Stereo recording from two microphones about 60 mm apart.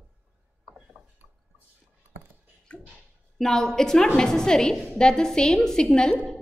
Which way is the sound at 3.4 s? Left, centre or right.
Centre.